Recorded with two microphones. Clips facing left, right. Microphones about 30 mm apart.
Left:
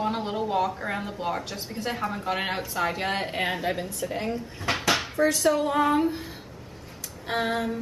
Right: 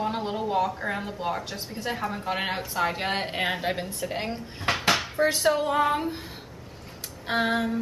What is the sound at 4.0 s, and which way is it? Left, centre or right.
Speech, right.